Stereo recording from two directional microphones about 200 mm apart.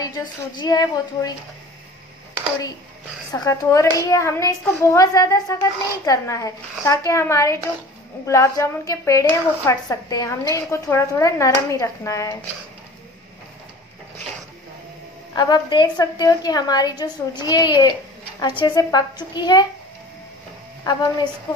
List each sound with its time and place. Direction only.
0.0 s a woman's voice: 20° left (ahead or behind)
3.3 s a child's voice: 15° left (ahead or behind)
15.3 s a woman's voice: 20° left (ahead or behind)
20.8 s a woman's voice: 20° left (ahead or behind)